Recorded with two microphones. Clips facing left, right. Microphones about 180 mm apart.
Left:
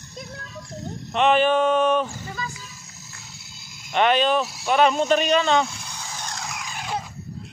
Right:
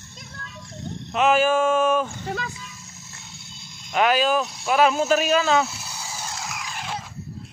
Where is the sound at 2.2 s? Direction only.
65° right (ahead or behind).